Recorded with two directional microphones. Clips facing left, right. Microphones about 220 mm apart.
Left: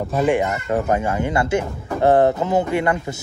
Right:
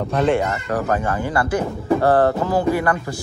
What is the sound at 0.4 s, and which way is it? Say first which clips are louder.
Speech: left 1 dB; 20° left (ahead or behind).